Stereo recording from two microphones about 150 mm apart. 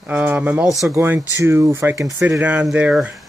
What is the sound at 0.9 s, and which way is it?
Speech, 15° right (ahead or behind).